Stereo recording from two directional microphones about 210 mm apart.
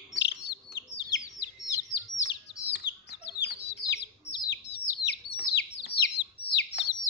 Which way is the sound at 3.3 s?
55° left (ahead or behind).